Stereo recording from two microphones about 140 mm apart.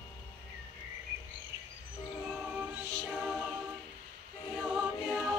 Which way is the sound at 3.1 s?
5° left (ahead or behind).